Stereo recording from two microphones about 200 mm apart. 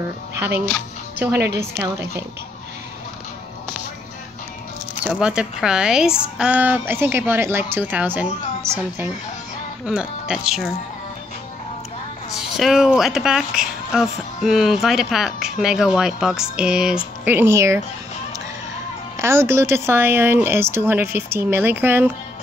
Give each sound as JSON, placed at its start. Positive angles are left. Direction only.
{"t": 1.3, "sound": "a woman's voice", "side_deg": -55}
{"t": 5.0, "sound": "speech", "side_deg": -5}
{"t": 9.8, "sound": "speech", "side_deg": -5}
{"t": 12.4, "sound": "speech", "side_deg": 0}
{"t": 19.1, "sound": "speech", "side_deg": -15}